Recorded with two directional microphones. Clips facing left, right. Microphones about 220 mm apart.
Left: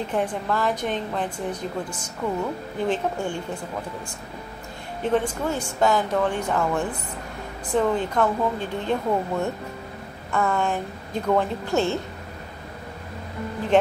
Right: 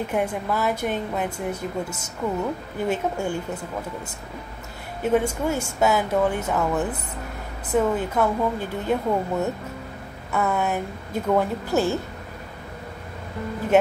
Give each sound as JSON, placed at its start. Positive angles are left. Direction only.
{"t": 0.0, "sound": "a woman's voice", "side_deg": -10}
{"t": 5.0, "sound": "a woman's voice", "side_deg": -10}